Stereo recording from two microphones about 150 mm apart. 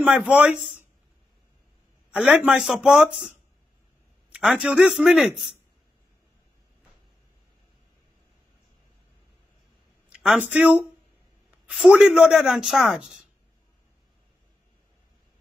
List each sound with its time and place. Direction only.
0.0 s speech: 10° right (ahead or behind)
2.0 s speech: 5° right (ahead or behind)
10.0 s a sound: 5° right (ahead or behind)
10.5 s speech: 5° right (ahead or behind)